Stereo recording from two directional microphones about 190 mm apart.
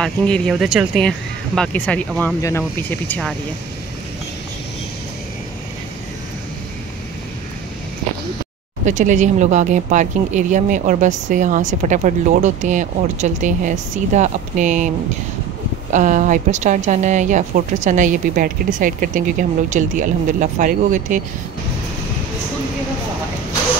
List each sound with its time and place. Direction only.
0.0 s speech: centre (ahead or behind)
8.8 s speech: 40° right (ahead or behind)
15.9 s speech: 40° right (ahead or behind)